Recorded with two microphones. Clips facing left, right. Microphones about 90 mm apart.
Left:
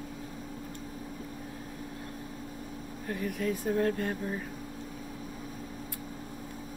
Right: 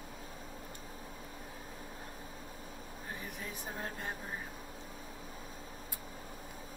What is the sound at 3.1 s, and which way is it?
Speech, 20° right (ahead or behind).